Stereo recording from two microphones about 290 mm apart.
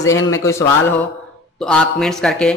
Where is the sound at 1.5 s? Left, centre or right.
Centre.